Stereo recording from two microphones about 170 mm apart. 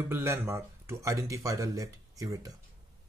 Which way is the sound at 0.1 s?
15° right (ahead or behind).